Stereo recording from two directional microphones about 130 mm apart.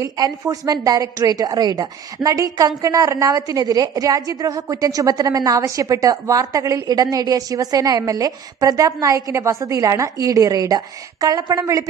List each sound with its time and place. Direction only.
0.0 s a woman's voice: 30° right (ahead or behind)